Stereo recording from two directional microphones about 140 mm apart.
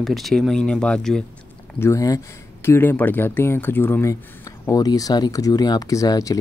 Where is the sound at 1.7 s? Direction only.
20° left (ahead or behind).